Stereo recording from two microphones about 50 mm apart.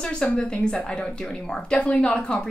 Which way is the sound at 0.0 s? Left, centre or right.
Centre.